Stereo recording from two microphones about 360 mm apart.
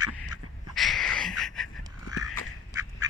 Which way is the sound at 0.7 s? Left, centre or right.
Centre.